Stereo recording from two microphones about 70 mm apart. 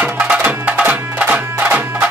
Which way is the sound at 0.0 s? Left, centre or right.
Centre.